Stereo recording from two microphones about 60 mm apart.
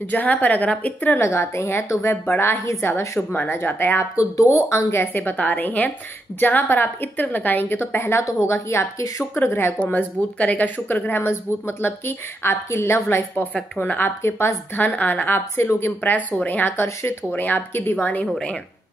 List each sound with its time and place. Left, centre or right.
0.1 s a woman's voice: left
1.2 s a woman's voice: left
3.2 s speech: left
4.0 s a woman's voice: left
8.3 s a woman's voice: left
9.8 s speech: left
13.6 s a woman's voice: left
16.0 s a woman's voice: left
16.7 s a woman's voice: left
17.3 s speech: left